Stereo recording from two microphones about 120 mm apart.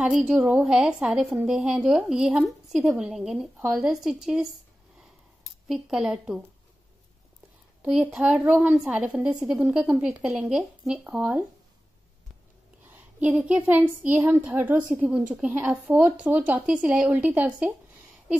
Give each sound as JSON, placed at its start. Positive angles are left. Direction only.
{"t": 0.0, "sound": "a woman's voice", "side_deg": -5}
{"t": 5.7, "sound": "a woman's voice", "side_deg": -5}
{"t": 7.8, "sound": "a woman's voice", "side_deg": -10}
{"t": 12.8, "sound": "a woman's voice", "side_deg": -15}